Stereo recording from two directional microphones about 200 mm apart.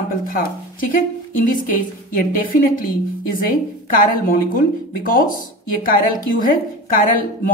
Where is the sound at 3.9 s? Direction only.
45° left (ahead or behind).